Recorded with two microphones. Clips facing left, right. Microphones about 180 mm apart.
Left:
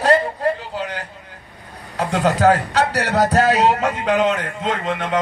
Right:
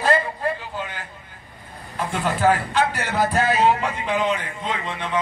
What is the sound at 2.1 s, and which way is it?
Speech, 85° left.